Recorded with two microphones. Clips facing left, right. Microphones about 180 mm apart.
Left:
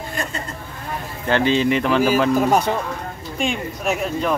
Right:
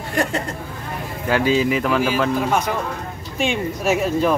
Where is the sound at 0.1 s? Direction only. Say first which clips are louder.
Right 9 dB; 75° right (ahead or behind).